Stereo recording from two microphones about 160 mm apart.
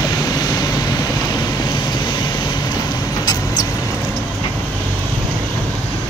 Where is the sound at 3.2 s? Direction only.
25° left (ahead or behind).